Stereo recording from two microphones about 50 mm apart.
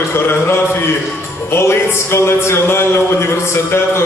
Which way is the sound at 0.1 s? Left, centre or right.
Left.